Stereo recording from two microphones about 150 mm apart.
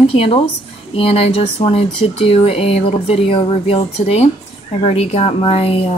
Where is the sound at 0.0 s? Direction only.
40° left (ahead or behind).